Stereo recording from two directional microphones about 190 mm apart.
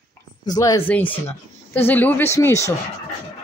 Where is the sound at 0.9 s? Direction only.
10° left (ahead or behind).